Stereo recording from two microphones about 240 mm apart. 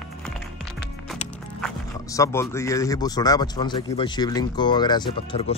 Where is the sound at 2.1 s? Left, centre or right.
Centre.